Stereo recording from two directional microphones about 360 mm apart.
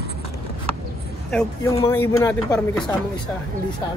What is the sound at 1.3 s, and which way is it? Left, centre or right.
A woman's voice, centre.